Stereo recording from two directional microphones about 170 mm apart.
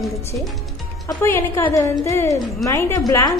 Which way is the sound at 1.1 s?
15° left (ahead or behind).